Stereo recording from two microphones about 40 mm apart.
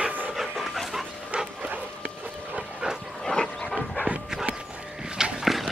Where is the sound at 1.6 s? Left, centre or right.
Right.